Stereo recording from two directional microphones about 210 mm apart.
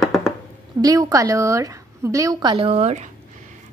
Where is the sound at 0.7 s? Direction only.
15° right (ahead or behind).